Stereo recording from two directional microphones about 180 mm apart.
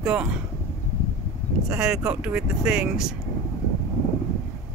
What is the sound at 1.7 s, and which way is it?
Speech, 5° right (ahead or behind).